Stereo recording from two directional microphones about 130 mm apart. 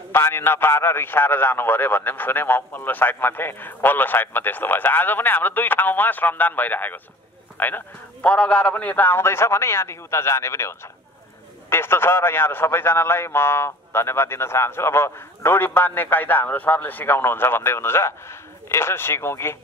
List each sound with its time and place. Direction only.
0.1 s a man's voice: 15° left (ahead or behind)